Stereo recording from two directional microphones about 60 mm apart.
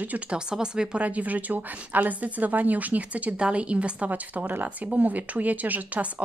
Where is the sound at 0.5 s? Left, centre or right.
Centre.